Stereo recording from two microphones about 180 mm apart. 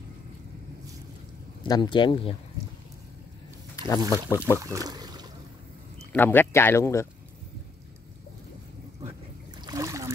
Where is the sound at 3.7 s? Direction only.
20° left (ahead or behind).